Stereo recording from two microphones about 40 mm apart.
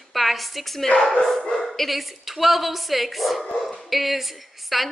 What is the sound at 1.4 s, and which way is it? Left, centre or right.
Speech, centre.